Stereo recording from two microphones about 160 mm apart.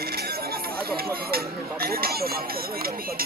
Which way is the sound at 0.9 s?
70° right (ahead or behind).